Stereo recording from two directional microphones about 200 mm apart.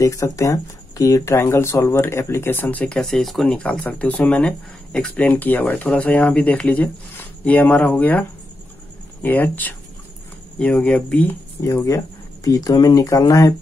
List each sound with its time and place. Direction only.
0.0 s speech: 15° left (ahead or behind)